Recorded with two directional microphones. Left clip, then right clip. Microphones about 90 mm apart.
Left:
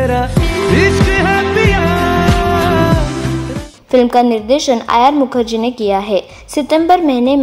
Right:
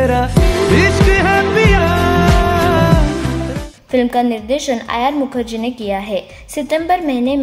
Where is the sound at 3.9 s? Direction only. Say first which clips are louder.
Left 5 dB; 25° left (ahead or behind).